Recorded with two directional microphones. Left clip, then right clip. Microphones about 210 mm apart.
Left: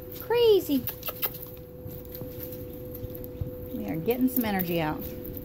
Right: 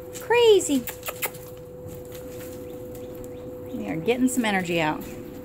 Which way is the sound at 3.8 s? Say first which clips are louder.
Right 4 dB; 5° right (ahead or behind).